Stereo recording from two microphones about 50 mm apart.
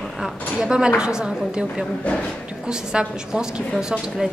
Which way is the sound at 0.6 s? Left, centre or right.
Centre.